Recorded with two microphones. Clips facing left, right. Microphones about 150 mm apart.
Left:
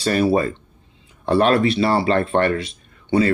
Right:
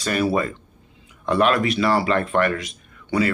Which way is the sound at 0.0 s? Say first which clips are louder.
Left 4 dB; 30° left (ahead or behind).